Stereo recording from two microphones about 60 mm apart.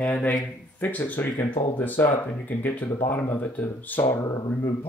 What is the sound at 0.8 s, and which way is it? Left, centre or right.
Speech, left.